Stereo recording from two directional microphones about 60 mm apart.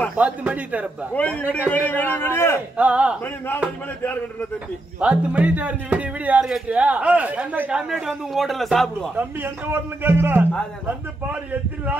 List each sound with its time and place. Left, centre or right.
0.1 s speech: right
1.1 s a man's voice: left
2.8 s speech: right
4.0 s a man's voice: left
5.0 s speech: right
7.7 s a man's voice: centre
9.1 s a man's voice: right